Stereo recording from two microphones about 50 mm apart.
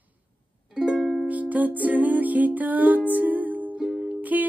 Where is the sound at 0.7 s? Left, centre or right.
Centre.